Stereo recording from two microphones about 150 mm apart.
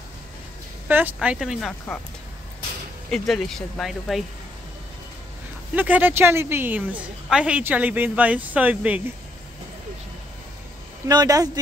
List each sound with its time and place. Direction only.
0.8 s a woman's voice: 10° right (ahead or behind)
3.1 s speech: centre (ahead or behind)
5.8 s a woman's voice: 10° right (ahead or behind)
11.1 s speech: 25° right (ahead or behind)